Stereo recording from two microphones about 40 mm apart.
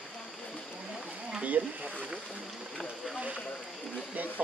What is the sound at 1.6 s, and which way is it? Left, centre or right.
Speech, right.